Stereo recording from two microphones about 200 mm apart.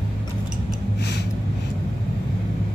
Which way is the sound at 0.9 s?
55° left (ahead or behind).